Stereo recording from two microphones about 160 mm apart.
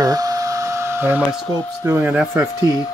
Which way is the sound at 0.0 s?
20° right (ahead or behind).